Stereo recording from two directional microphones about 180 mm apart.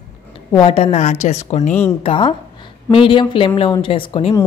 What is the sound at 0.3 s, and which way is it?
A woman's voice, 25° left (ahead or behind).